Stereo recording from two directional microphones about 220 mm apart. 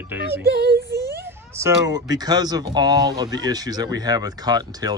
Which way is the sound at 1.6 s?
15° right (ahead or behind).